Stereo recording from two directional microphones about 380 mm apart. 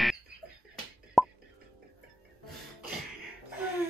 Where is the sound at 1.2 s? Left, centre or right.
Centre.